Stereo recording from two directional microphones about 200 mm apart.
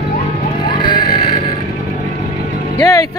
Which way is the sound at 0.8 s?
20° left (ahead or behind).